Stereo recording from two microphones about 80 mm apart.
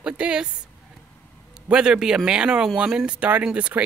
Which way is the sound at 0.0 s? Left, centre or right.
Centre.